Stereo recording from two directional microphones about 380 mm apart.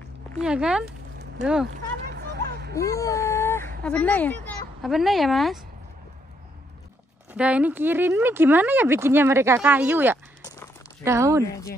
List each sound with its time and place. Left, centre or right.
0.3 s a woman's voice: centre
2.0 s a sound: right
2.7 s whimper: centre
3.8 s a woman's voice: centre
7.3 s a woman's voice: centre
11.4 s speech: centre